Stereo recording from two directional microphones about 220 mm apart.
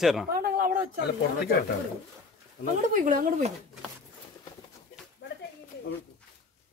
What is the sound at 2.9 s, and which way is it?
Speech, 35° right (ahead or behind).